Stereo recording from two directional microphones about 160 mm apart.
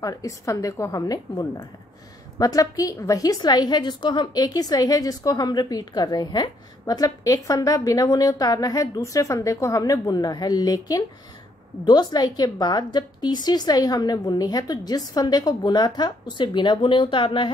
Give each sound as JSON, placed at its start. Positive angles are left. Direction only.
{"t": 0.0, "sound": "a woman's voice", "side_deg": 20}